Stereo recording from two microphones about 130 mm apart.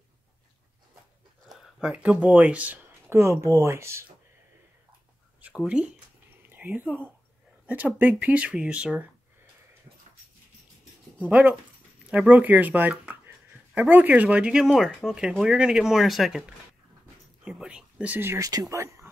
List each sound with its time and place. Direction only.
1.5 s speech: 5° right (ahead or behind); by 4.0 s 20° right (ahead or behind)
5.4 s speech: 5° right (ahead or behind)
6.5 s a sound: 15° right (ahead or behind)
7.6 s speech: 10° right (ahead or behind)
11.2 s speech: 10° right (ahead or behind)
12.9 s a sound: 10° right (ahead or behind)
13.7 s speech: 15° right (ahead or behind)